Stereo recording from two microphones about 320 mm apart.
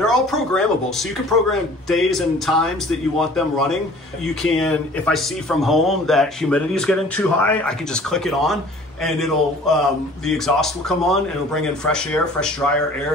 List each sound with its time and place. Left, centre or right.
0.0 s speech: centre